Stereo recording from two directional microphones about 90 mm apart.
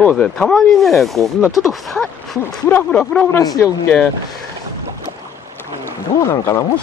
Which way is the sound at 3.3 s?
40° left (ahead or behind).